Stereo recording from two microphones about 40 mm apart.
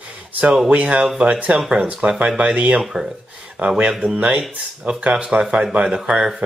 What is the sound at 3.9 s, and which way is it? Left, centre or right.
Speech, right.